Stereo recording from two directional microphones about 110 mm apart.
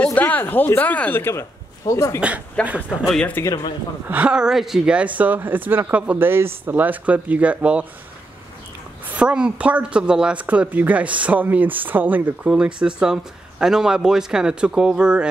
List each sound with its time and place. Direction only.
0.0 s speech: 15° left (ahead or behind)
2.1 s speech: 10° right (ahead or behind)
3.1 s speech: 10° left (ahead or behind)
4.1 s speech: 10° right (ahead or behind)
9.1 s speech: 10° right (ahead or behind)